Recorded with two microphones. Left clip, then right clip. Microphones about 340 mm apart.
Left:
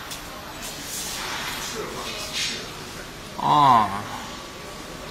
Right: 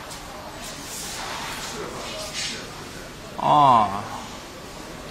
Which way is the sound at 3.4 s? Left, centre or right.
Centre.